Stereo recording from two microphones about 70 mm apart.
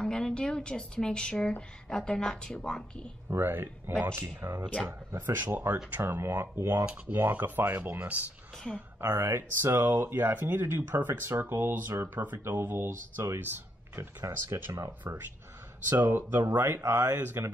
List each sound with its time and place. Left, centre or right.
0.0 s a woman's voice: centre
3.3 s speech: right
14.7 s speech: right
16.0 s speech: right